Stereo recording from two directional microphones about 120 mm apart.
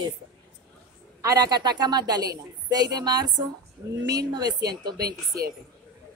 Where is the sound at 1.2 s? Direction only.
30° right (ahead or behind).